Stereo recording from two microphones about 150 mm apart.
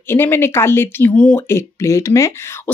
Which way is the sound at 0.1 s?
15° left (ahead or behind).